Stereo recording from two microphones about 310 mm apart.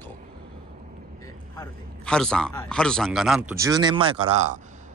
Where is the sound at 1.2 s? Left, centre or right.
Centre.